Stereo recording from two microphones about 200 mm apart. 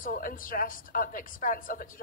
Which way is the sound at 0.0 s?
45° left (ahead or behind).